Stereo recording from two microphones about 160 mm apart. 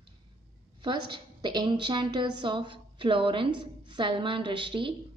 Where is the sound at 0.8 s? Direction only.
30° right (ahead or behind).